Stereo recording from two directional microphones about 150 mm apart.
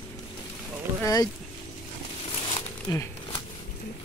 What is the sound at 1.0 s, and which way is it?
Speech, 25° left (ahead or behind).